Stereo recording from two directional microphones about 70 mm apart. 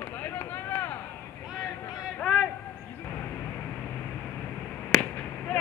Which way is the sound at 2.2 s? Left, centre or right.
Centre.